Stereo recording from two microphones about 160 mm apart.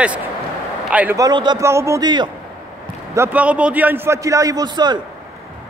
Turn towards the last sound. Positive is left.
turn(degrees=-25)  # may be behind; listen again after turning